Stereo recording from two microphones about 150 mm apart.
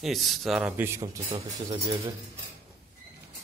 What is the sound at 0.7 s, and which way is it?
Speech, 15° right (ahead or behind).